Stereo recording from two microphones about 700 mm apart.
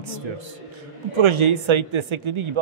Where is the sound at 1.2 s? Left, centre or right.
Right.